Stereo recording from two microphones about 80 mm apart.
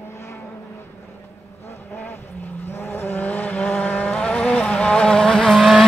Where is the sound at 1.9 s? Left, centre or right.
Left; by 5.8 s centre.